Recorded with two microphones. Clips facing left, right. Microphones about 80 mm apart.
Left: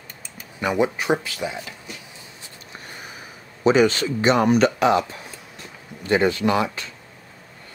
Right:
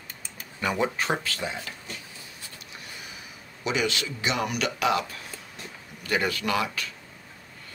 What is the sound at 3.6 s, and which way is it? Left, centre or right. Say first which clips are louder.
Speech: left 11 dB; left.